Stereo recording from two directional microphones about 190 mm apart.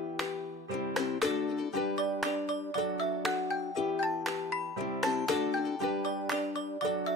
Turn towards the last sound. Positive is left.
turn(degrees=0)  # may be behind; listen again after turning